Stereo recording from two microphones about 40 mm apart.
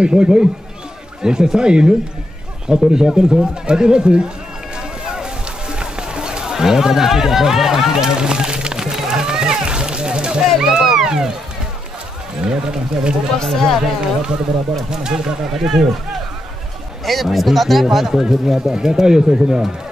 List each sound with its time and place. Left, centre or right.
0.0 s speech: right
5.0 s music: centre
10.6 s a sound: centre
12.4 s speech: right
13.4 s speech: centre
14.9 s speech: centre
17.0 s speech: centre